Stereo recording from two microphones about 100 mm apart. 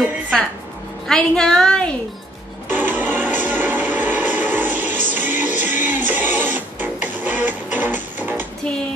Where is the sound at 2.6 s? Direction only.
20° right (ahead or behind).